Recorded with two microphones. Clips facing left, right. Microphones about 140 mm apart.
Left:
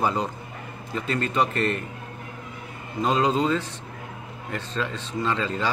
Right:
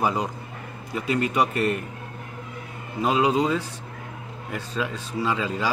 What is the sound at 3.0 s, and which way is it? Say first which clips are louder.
A man's voice: right 1 dB; 10° right (ahead or behind).